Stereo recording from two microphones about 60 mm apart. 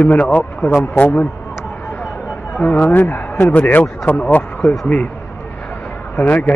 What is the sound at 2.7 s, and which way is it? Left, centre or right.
Speech, left.